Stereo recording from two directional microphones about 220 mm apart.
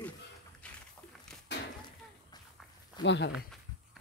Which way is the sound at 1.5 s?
50° left (ahead or behind).